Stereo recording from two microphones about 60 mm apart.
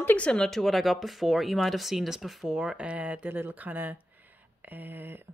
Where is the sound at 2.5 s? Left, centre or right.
Centre; by 5.3 s right.